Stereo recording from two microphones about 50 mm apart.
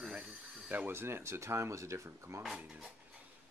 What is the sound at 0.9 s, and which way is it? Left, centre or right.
Speech, right.